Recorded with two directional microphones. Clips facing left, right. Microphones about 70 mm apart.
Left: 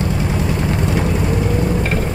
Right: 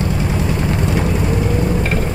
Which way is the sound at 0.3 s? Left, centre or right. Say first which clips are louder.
Even; centre.